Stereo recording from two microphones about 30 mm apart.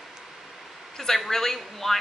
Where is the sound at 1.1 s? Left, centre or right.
Centre.